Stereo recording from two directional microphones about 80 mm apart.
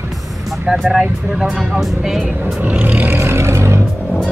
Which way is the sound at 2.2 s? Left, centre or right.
Centre.